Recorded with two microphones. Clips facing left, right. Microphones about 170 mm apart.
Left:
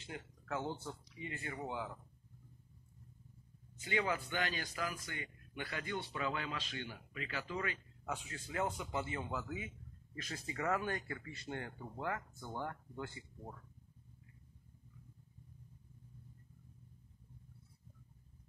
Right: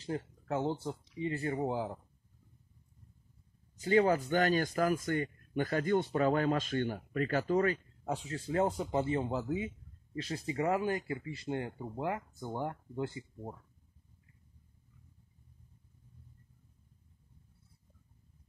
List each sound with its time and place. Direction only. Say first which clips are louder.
0.0 s speech: right 11 dB; 35° right (ahead or behind)
3.7 s speech: right 10 dB; 40° right (ahead or behind)